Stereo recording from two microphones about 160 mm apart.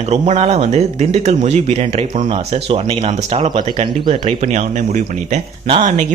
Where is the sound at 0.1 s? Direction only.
40° right (ahead or behind).